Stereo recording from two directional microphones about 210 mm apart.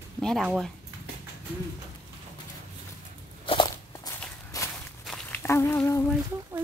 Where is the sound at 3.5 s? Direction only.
25° left (ahead or behind).